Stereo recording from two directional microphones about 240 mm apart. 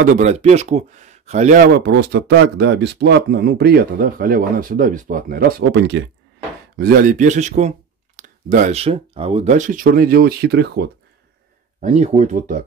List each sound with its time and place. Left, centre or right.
0.0 s speech: right
11.8 s speech: right